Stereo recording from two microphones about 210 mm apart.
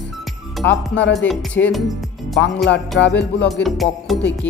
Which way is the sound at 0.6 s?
55° left (ahead or behind).